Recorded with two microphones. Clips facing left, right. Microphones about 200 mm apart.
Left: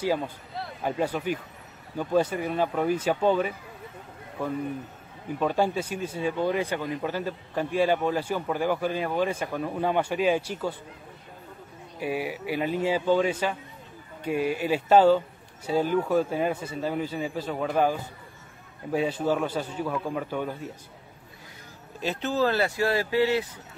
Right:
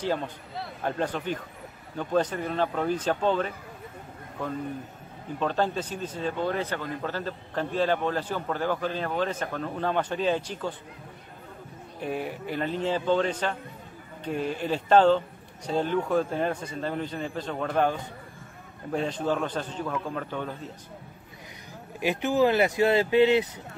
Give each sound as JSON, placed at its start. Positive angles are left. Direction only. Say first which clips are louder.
{"t": 0.0, "sound": "speech", "louder": "left 2 dB", "side_deg": 5}
{"t": 12.0, "sound": "speech", "louder": "left 2 dB", "side_deg": 5}
{"t": 22.0, "sound": "speech", "louder": "right 3 dB", "side_deg": -15}